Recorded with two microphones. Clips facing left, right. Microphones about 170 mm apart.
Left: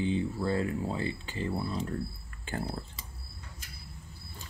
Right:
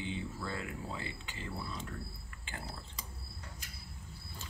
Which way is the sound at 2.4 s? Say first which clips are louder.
Left 11 dB; 45° left (ahead or behind).